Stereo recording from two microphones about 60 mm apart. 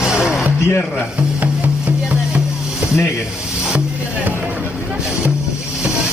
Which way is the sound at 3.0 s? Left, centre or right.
Left.